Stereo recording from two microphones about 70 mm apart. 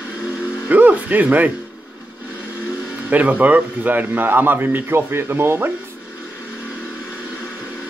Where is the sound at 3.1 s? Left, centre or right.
Right.